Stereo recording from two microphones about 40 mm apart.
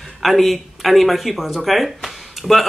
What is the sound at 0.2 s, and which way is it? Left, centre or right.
Speech, centre.